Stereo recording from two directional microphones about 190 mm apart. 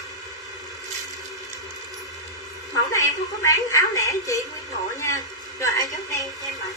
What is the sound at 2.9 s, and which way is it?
Speech, 15° left (ahead or behind).